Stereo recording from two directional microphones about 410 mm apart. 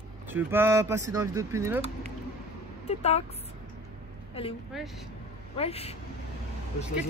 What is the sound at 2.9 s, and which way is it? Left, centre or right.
Speech, centre.